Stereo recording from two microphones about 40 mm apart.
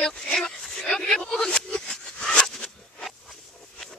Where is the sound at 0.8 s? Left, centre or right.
Centre.